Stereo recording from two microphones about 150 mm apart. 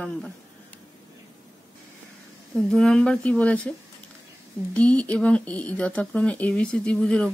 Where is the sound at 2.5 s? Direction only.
5° left (ahead or behind).